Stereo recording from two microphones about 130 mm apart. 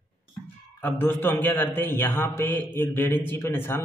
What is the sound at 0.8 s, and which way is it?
A man's voice, 15° left (ahead or behind).